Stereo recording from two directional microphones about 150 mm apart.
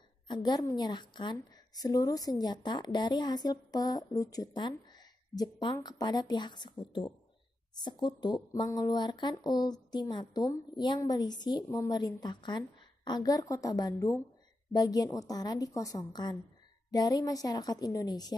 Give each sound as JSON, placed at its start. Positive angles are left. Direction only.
{"t": 0.3, "sound": "a woman's voice", "side_deg": 30}
{"t": 8.2, "sound": "a woman's voice", "side_deg": 25}